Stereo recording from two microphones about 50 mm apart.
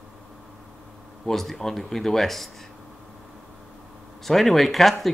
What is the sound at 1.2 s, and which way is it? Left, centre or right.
Speech, centre.